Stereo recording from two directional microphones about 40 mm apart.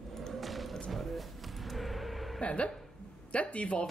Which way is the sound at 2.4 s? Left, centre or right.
Left.